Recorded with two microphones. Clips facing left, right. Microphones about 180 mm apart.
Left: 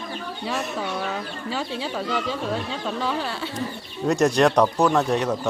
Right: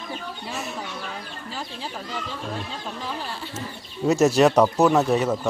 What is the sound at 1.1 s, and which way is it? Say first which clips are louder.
Chicken: left 6 dB; 75° left (ahead or behind).